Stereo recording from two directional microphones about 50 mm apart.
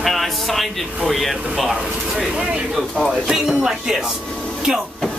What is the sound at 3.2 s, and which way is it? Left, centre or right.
Speech, centre.